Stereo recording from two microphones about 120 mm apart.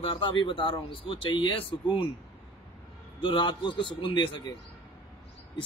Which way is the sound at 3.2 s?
45° left (ahead or behind).